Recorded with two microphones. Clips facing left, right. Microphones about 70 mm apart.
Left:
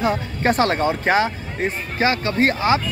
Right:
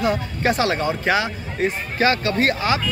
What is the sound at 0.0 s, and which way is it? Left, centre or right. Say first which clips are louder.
Speech: even; left.